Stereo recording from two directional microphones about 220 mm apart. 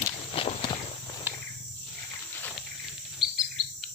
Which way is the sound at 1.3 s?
10° right (ahead or behind).